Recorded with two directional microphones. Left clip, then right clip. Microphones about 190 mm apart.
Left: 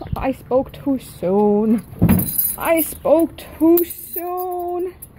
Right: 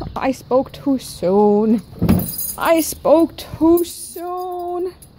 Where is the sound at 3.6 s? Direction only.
5° right (ahead or behind).